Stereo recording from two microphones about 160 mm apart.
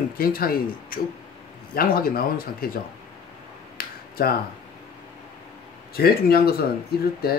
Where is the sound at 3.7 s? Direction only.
65° left (ahead or behind).